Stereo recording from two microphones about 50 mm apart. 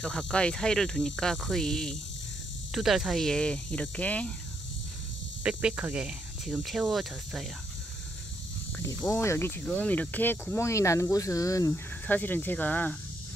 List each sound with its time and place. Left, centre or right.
0.0 s speech: centre
0.6 s cricket: centre
2.7 s speech: centre
3.2 s speech: centre
5.4 s speech: centre
6.9 s speech: centre
9.1 s speech: left
9.8 s speech: left
10.2 s speech: left
10.6 s speech: left
11.7 s speech: left